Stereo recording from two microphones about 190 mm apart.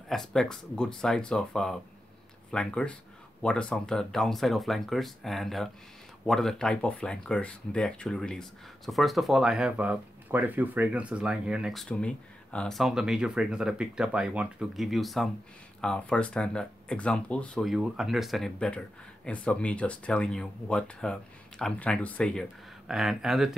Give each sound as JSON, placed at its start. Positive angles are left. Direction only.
{"t": 0.1, "sound": "speech", "side_deg": 0}